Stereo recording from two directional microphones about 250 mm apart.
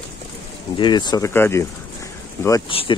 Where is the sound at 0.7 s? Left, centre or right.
Centre.